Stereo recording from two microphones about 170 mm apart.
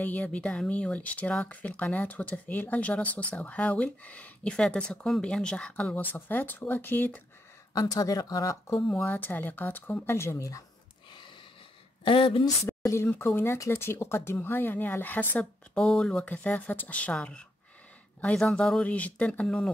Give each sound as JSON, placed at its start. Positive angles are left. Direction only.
{"t": 0.0, "sound": "speech", "side_deg": 10}
{"t": 7.7, "sound": "speech", "side_deg": 20}
{"t": 8.7, "sound": "speech", "side_deg": 5}
{"t": 12.0, "sound": "speech", "side_deg": 30}
{"t": 12.6, "sound": "speech", "side_deg": 15}